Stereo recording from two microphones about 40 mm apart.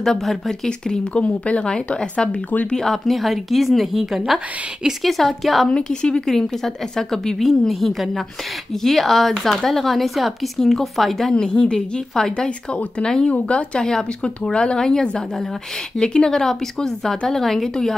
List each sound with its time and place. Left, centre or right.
0.0 s a woman's voice: centre
1.1 s speech: left
1.6 s a woman's voice: left
2.8 s a woman's voice: centre
5.7 s a woman's voice: left
6.2 s a woman's voice: centre
11.3 s a woman's voice: left
13.3 s a woman's voice: left; by 17.6 s centre